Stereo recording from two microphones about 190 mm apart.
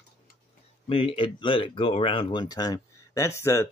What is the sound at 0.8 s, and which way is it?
Speech, 30° left (ahead or behind).